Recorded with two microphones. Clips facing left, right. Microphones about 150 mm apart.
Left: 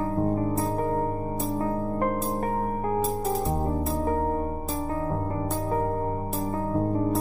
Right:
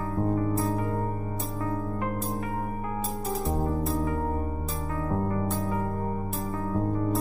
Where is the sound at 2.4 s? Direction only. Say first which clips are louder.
Left 5 dB; 45° left (ahead or behind).